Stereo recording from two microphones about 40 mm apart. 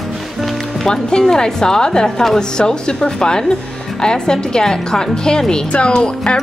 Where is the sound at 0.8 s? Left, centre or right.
Centre.